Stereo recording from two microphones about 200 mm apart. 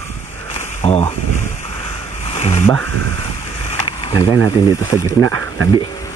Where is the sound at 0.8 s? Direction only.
30° left (ahead or behind).